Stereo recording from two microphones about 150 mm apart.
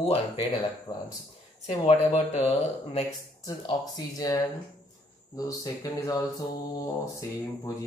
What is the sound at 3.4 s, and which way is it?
Speech, 25° left (ahead or behind).